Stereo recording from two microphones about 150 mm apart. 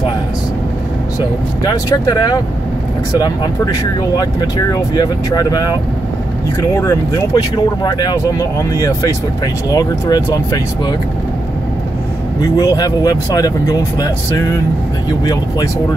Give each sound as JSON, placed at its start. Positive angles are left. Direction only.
{"t": 1.6, "sound": "speech", "side_deg": 25}
{"t": 4.2, "sound": "speech", "side_deg": 25}
{"t": 12.4, "sound": "speech", "side_deg": 25}